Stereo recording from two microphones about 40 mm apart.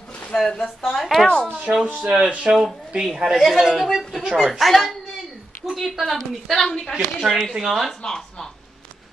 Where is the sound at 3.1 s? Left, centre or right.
Centre.